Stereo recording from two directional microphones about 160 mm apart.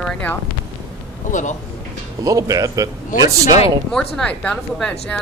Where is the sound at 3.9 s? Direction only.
5° left (ahead or behind).